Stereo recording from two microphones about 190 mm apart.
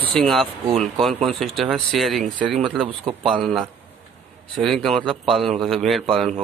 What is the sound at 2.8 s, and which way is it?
Speech, 30° right (ahead or behind).